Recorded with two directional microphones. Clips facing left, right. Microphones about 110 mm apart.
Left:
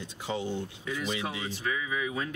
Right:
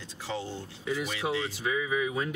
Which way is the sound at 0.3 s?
15° left (ahead or behind).